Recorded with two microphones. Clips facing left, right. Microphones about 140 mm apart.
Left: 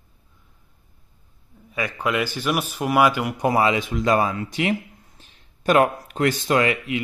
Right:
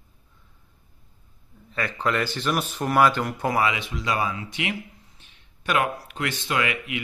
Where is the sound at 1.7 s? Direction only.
10° left (ahead or behind).